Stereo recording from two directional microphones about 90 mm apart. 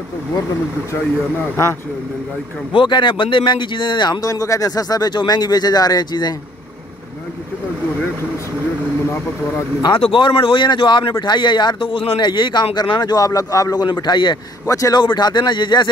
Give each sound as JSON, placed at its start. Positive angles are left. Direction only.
{"t": 2.7, "sound": "speech", "side_deg": 65}
{"t": 10.1, "sound": "a man's voice", "side_deg": 70}
{"t": 12.2, "sound": "a man's voice", "side_deg": 55}
{"t": 14.7, "sound": "a man's voice", "side_deg": 40}
{"t": 15.0, "sound": "a man's voice", "side_deg": 55}